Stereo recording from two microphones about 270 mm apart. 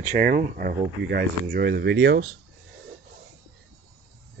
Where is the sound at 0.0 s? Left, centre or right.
Right.